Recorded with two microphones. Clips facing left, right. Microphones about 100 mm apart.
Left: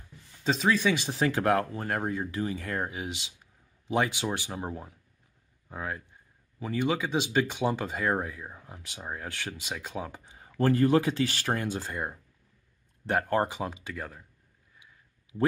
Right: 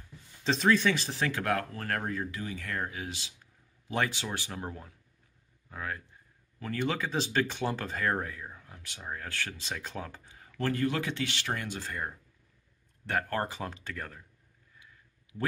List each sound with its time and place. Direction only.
0.4 s speech: 5° left (ahead or behind)
1.2 s speech: 30° left (ahead or behind)
1.7 s speech: 15° left (ahead or behind)
2.3 s speech: 30° left (ahead or behind); by 10.2 s 15° left (ahead or behind)
10.2 s speech: 25° left (ahead or behind)
13.1 s speech: 20° left (ahead or behind)
15.3 s speech: 20° left (ahead or behind)